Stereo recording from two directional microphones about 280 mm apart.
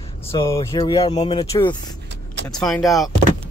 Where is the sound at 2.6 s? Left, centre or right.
Centre.